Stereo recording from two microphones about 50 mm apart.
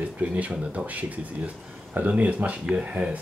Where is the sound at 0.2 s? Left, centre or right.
Right.